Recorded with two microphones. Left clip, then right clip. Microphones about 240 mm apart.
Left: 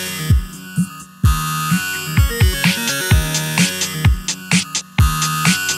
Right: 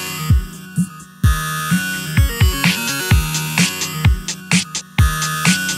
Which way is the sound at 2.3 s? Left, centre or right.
Centre.